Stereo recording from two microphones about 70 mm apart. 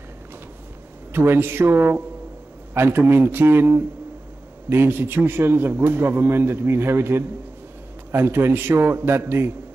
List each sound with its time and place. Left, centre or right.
1.1 s a man's voice: right